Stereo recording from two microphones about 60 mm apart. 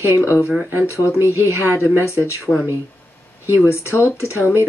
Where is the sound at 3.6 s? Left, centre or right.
Left.